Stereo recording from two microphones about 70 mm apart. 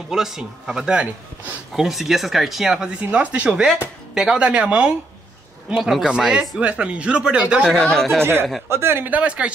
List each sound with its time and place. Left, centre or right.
0.1 s speech: centre
1.9 s speech: centre
3.0 s speech: right
4.1 s speech: centre
7.7 s speech: centre
8.2 s speech: right; by 9.5 s centre